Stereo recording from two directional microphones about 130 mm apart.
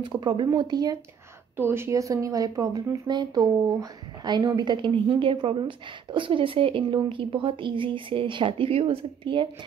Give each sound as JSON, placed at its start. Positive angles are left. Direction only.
{"t": 0.0, "sound": "speech", "side_deg": -35}
{"t": 1.6, "sound": "speech", "side_deg": -20}